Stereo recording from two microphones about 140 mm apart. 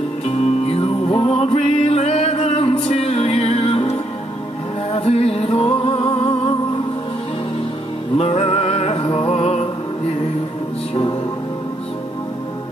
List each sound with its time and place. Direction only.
0.2 s music: 45° left (ahead or behind)
8.2 s music: 45° left (ahead or behind)